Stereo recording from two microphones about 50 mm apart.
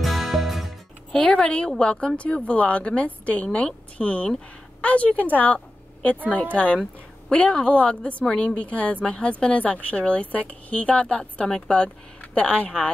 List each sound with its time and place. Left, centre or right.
0.0 s music: centre
1.1 s a woman's voice: centre
11.4 s speech: centre
11.7 s speech: left